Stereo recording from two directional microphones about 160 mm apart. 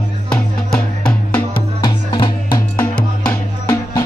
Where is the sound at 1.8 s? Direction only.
30° left (ahead or behind).